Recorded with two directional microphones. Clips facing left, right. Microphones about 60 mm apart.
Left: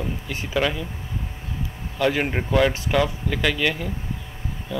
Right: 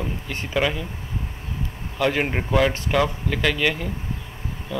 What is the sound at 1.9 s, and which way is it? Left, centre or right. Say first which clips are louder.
Speech: even; centre.